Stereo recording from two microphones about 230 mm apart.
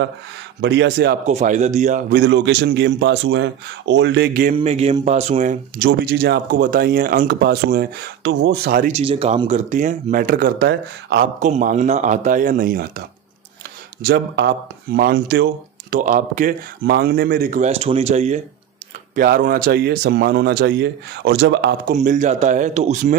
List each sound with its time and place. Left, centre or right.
0.6 s speech: right
1.2 s speech: right
4.6 s speech: right
11.3 s speech: right
14.0 s speech: right
21.9 s speech: right